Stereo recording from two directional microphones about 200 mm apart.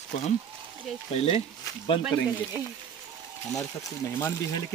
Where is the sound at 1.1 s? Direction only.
30° left (ahead or behind).